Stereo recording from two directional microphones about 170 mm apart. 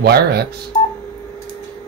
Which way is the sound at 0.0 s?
70° right (ahead or behind).